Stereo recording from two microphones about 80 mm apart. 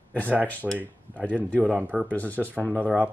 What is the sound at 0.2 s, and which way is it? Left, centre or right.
Speech, right.